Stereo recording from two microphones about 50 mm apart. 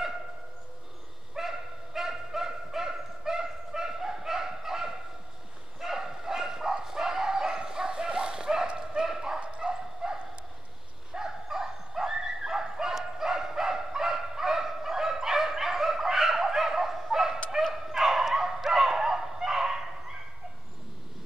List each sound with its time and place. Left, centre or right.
1.3 s dog: centre
5.8 s bow-wow: centre
8.7 s dog: centre
11.1 s bow-wow: centre
17.8 s dog: centre